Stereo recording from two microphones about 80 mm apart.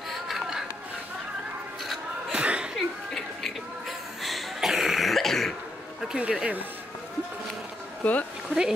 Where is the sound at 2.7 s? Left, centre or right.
Centre.